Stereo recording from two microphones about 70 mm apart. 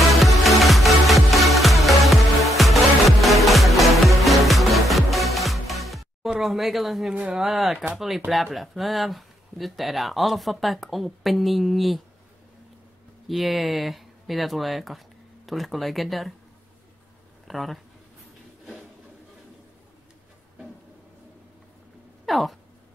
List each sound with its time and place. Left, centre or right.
0.2 s music: centre
6.4 s speech: centre
13.3 s speech: centre
17.5 s speech: centre
22.2 s a sound: centre